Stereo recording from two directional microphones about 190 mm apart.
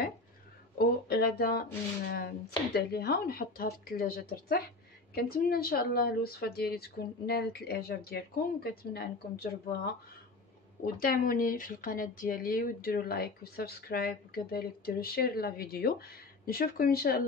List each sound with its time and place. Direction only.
0.7 s a woman's voice: 55° left (ahead or behind)
11.0 s speech: 50° left (ahead or behind)